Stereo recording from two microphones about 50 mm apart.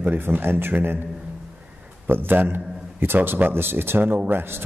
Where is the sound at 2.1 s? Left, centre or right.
Right.